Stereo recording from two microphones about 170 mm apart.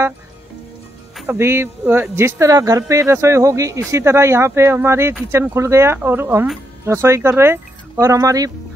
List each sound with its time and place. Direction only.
1.2 s speech: 15° right (ahead or behind)